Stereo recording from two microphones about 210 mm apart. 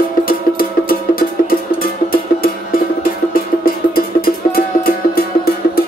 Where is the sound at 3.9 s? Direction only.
45° left (ahead or behind).